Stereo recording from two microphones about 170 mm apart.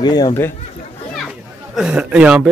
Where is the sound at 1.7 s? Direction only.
5° right (ahead or behind).